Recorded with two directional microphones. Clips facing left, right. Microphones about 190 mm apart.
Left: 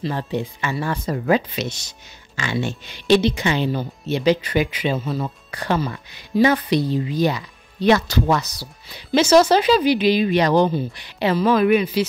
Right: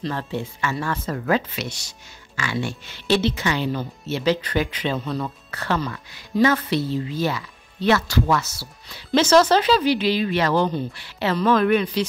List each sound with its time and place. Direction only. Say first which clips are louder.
0.1 s speech: left 3 dB; 15° left (ahead or behind)